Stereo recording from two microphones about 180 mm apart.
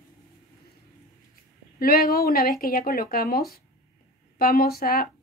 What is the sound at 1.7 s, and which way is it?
A woman's voice, 55° left (ahead or behind).